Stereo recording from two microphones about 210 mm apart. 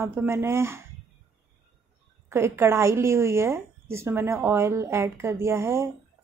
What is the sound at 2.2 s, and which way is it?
Speech, 10° right (ahead or behind).